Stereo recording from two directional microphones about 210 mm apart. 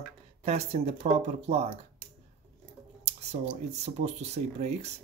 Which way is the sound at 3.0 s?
30° right (ahead or behind).